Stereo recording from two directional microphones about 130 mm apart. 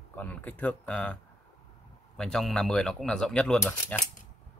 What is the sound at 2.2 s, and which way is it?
Speech, centre (ahead or behind).